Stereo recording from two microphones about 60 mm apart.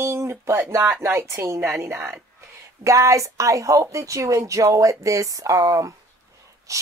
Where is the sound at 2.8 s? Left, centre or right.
Right.